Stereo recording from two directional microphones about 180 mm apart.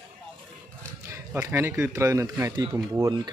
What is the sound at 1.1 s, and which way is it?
A man's voice, 15° right (ahead or behind).